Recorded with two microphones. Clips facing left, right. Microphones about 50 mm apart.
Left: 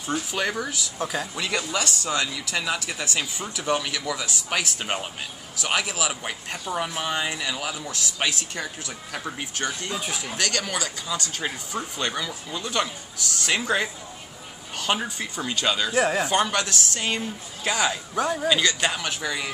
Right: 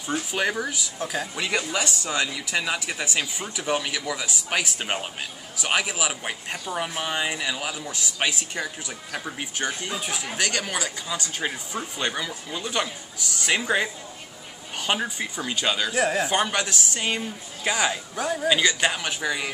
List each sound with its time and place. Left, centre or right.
0.0 s speech: centre
0.9 s a man's voice: centre
1.3 s speech: centre
9.7 s speech: centre
9.9 s a man's voice: centre
10.2 s speech: centre
15.9 s a man's voice: centre
16.3 s speech: centre
18.1 s a man's voice: centre
18.5 s speech: centre